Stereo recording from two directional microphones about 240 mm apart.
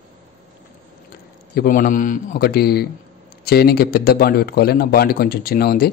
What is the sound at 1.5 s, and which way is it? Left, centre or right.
Speech, left.